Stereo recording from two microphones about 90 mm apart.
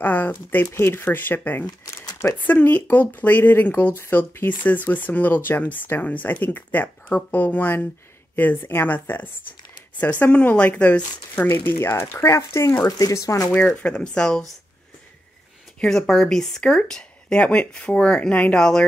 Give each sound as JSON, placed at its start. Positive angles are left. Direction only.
{"t": 0.0, "sound": "speech", "side_deg": 20}
{"t": 13.5, "sound": "speech", "side_deg": 15}
{"t": 15.8, "sound": "speech", "side_deg": 5}